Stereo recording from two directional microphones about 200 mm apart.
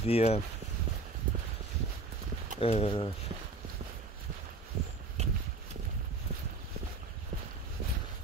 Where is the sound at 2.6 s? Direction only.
30° left (ahead or behind).